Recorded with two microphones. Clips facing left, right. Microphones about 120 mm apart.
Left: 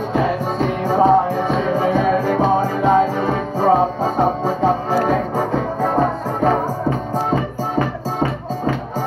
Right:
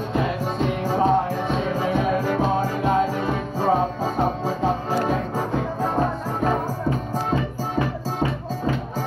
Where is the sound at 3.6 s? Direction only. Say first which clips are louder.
Left 6 dB; 50° left (ahead or behind); by 6.6 s 65° left (ahead or behind).